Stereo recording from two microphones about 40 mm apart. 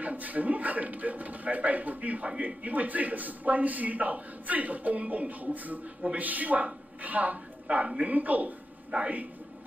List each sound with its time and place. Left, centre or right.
0.0 s a man's voice: right
7.6 s a woman's voice: right